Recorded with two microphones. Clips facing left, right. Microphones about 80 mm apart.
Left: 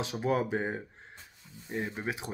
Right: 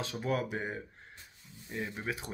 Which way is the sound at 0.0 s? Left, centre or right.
Centre.